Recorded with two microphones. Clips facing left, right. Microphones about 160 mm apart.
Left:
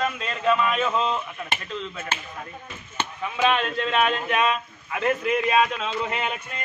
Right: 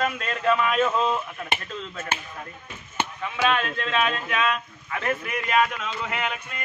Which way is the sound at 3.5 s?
20° left (ahead or behind).